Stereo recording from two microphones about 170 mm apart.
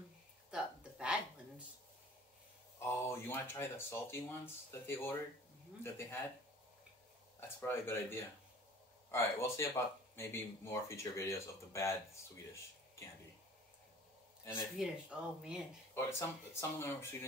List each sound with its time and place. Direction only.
0.5 s hiccup: 5° right (ahead or behind)
2.8 s speech: 15° left (ahead or behind)
7.3 s speech: 15° left (ahead or behind)
14.4 s speech: 15° left (ahead or behind)
14.8 s speech: 5° right (ahead or behind)
15.9 s speech: 15° left (ahead or behind)